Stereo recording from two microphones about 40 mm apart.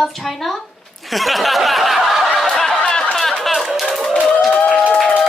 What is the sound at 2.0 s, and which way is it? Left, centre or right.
Snicker, centre.